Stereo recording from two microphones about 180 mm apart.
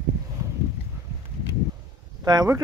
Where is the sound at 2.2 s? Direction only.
20° right (ahead or behind).